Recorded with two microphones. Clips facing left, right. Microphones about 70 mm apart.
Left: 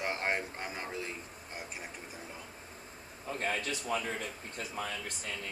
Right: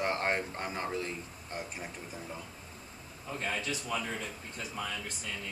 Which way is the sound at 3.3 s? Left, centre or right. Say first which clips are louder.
Left 1 dB; left.